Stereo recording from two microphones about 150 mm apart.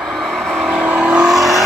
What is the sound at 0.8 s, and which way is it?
Vehicle, 5° right (ahead or behind).